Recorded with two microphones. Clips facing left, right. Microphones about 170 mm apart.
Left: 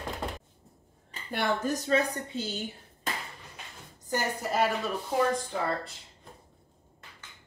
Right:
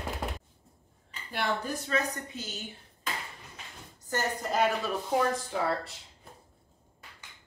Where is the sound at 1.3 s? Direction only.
40° left (ahead or behind).